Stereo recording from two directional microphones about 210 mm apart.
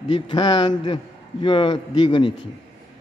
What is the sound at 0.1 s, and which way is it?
A man's voice, 20° left (ahead or behind).